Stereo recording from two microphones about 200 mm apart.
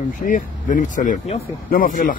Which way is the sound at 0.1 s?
40° left (ahead or behind).